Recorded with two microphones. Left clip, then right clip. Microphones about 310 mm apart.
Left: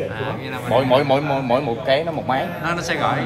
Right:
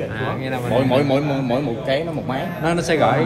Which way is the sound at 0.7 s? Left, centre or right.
Left.